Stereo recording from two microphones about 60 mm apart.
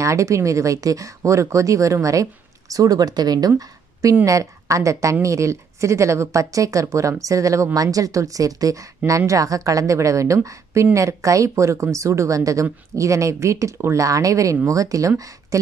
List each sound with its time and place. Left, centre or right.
0.0 s speech: right
2.7 s speech: right
4.1 s speech: right
14.0 s speech: right